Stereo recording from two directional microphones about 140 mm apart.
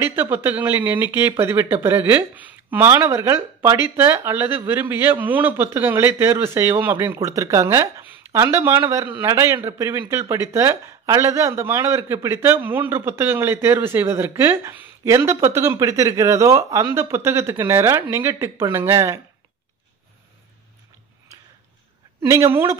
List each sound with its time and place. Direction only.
0.0 s speech: 15° right (ahead or behind)
22.2 s speech: 20° right (ahead or behind)